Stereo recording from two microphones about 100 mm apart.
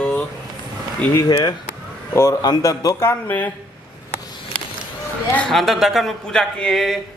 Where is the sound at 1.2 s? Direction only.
40° left (ahead or behind).